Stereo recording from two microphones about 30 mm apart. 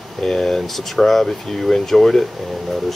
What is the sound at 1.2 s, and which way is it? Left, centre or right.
Speech, centre.